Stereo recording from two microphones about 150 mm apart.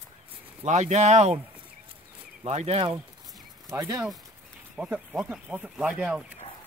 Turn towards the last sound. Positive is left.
turn(degrees=-5)  # may be behind; listen again after turning